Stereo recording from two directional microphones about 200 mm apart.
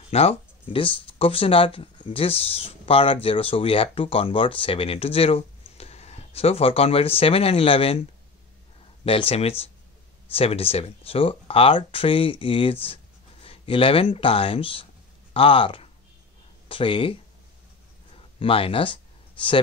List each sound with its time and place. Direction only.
0.1 s speech: 30° left (ahead or behind)
9.0 s speech: 30° left (ahead or behind)
18.1 s a sound: 25° left (ahead or behind)